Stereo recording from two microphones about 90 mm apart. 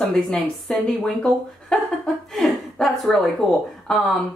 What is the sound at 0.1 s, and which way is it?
A woman's voice, 5° left (ahead or behind).